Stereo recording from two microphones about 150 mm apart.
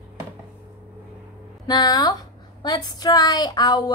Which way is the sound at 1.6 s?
30° left (ahead or behind).